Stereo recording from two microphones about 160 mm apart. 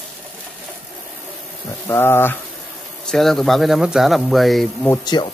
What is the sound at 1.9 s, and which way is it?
Speech, 15° left (ahead or behind).